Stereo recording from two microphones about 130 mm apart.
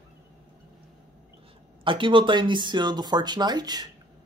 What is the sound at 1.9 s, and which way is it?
Speech, 40° right (ahead or behind).